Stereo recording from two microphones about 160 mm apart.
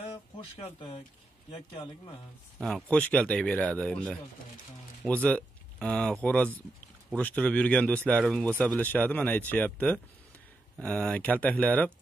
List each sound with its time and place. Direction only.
0.6 s a man's voice: 35° left (ahead or behind)
2.6 s speech: 5° left (ahead or behind)